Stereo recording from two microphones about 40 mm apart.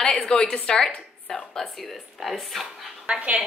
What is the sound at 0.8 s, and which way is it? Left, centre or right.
A woman's voice, centre.